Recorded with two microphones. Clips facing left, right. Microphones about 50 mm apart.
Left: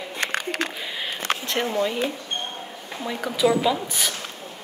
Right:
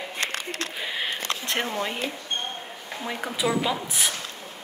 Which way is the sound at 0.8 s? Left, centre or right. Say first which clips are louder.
Right 1 dB; centre.